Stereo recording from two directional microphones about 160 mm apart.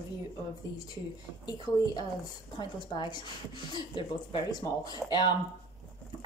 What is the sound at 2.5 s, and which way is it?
A woman's voice, 30° left (ahead or behind).